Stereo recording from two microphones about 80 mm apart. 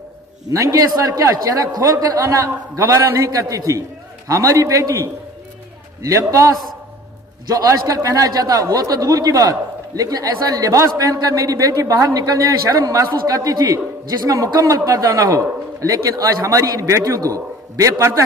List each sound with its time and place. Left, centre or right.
0.5 s a man's voice: right
7.4 s a man's voice: right